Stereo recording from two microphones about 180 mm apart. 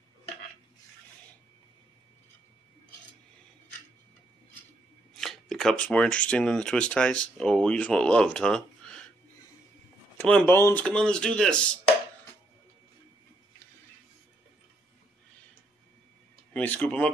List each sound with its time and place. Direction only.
5.1 s speech: centre (ahead or behind)
10.1 s speech: 10° left (ahead or behind)
16.5 s speech: 10° left (ahead or behind)